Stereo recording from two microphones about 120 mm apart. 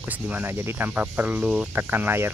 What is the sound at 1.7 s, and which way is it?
Speech, 15° right (ahead or behind).